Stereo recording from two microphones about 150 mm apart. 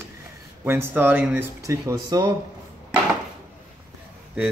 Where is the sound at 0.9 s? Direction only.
15° right (ahead or behind); by 2.3 s 30° right (ahead or behind).